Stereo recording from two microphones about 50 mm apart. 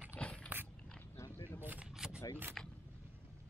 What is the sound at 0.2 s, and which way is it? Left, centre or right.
Biting, left.